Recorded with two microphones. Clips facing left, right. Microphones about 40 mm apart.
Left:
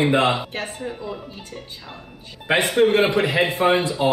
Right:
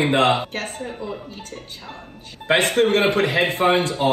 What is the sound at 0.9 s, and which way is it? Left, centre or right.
Speech, left.